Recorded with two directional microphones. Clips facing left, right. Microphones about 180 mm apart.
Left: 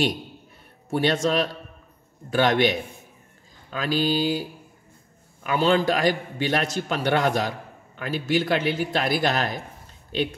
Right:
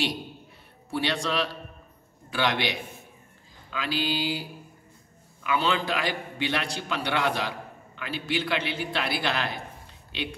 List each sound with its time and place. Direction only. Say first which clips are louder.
0.8 s a man's voice: left 6 dB; 45° left (ahead or behind)
5.4 s a man's voice: left 6 dB; 45° left (ahead or behind)